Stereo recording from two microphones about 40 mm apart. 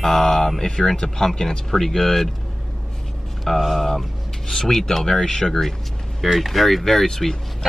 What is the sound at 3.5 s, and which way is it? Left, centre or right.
Speech, centre.